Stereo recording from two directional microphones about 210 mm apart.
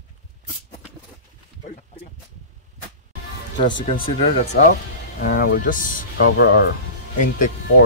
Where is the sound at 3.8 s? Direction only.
30° left (ahead or behind).